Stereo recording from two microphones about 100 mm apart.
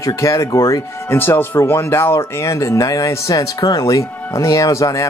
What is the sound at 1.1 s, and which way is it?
Speech, 20° left (ahead or behind).